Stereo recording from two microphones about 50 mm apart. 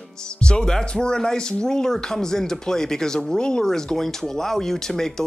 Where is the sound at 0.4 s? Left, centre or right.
Centre.